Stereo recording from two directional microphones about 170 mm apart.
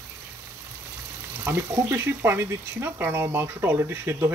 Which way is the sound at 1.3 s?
15° right (ahead or behind).